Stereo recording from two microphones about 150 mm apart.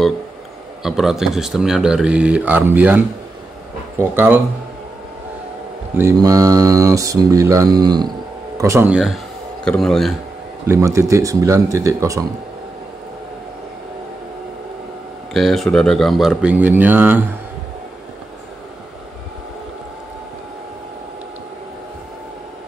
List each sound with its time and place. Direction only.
0.8 s speech: centre (ahead or behind)
5.9 s speech: 20° right (ahead or behind)
8.9 s speech: centre (ahead or behind)
10.7 s speech: 20° right (ahead or behind)
15.3 s speech: centre (ahead or behind)